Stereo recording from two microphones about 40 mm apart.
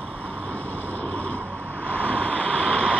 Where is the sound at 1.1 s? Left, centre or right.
Left.